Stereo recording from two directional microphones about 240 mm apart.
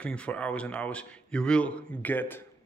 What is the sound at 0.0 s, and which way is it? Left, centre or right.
Speech, centre.